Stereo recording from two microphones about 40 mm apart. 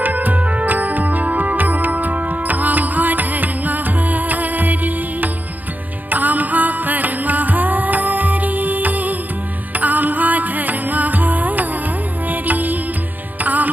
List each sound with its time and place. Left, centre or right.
0.0 s music: right